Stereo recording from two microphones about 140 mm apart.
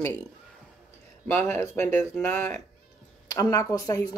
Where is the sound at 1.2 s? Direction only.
15° left (ahead or behind).